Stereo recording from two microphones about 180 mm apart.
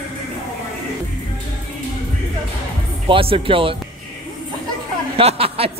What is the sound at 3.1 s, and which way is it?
Speech, 30° right (ahead or behind).